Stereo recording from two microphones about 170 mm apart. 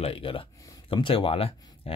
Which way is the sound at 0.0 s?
35° left (ahead or behind).